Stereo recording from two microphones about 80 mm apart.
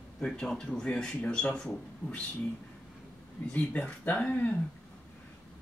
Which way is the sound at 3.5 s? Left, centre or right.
Centre.